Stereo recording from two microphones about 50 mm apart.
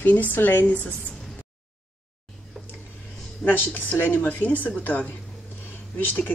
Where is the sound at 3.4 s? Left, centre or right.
Left.